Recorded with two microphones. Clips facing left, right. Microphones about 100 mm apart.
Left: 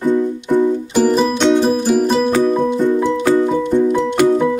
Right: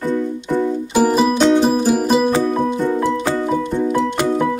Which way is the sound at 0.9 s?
10° right (ahead or behind).